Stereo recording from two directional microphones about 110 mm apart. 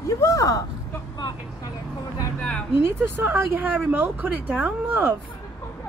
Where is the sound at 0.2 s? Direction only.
30° left (ahead or behind).